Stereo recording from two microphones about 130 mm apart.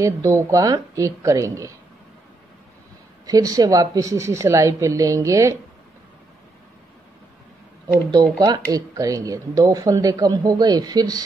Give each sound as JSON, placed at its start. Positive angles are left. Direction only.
{"t": 0.0, "sound": "speech", "side_deg": -25}
{"t": 3.3, "sound": "speech", "side_deg": -30}
{"t": 8.1, "sound": "speech", "side_deg": -30}